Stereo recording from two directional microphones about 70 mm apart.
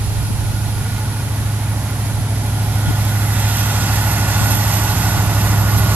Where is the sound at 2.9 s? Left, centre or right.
Right.